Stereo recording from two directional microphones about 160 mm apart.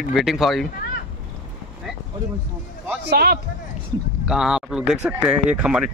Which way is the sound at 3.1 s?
70° right (ahead or behind).